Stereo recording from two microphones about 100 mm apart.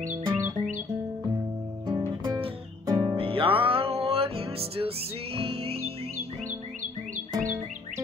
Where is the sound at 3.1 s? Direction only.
65° right (ahead or behind); by 6.3 s 85° right.